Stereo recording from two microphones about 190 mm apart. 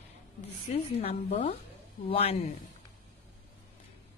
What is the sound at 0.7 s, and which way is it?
A woman's voice, 35° left (ahead or behind).